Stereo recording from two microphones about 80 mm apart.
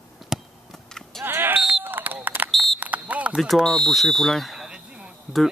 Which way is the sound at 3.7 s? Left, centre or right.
Centre.